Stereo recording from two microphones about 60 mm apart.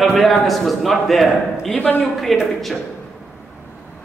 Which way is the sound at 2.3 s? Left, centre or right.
Centre.